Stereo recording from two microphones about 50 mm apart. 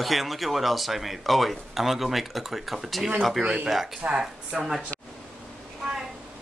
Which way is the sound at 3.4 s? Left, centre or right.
Centre.